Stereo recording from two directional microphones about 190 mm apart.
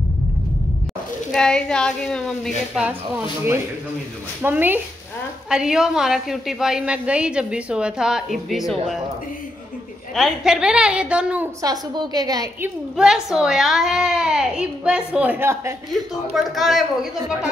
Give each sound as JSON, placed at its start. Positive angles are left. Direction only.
{"t": 1.3, "sound": "a child's voice", "side_deg": 5}
{"t": 2.9, "sound": "a child's voice", "side_deg": -10}
{"t": 10.1, "sound": "a child's voice", "side_deg": 0}
{"t": 11.6, "sound": "a woman's voice", "side_deg": -20}
{"t": 12.9, "sound": "a child's voice", "side_deg": -5}
{"t": 16.3, "sound": "a child's voice", "side_deg": 0}